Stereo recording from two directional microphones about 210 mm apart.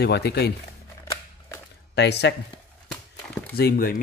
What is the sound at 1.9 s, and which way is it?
Speech, 50° left (ahead or behind).